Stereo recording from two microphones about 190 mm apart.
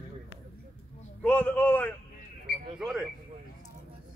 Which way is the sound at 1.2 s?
10° left (ahead or behind).